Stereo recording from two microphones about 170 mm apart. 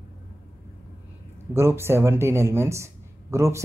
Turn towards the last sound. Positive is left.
turn(degrees=-15)  # may be behind; listen again after turning